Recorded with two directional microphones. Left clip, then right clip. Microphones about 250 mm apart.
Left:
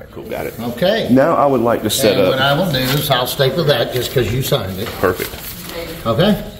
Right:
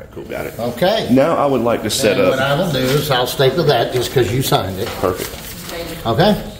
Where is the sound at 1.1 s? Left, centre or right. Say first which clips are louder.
Left 1 dB; centre.